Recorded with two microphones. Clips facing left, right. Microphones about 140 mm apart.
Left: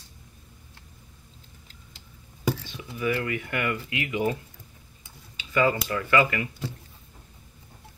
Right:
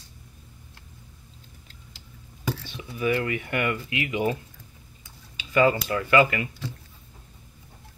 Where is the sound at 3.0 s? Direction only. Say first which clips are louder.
Right 2 dB; 20° right (ahead or behind).